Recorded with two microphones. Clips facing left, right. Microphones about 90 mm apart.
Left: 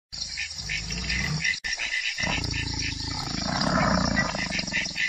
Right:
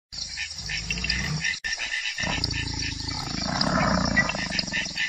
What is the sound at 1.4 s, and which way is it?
Dog, 40° right (ahead or behind).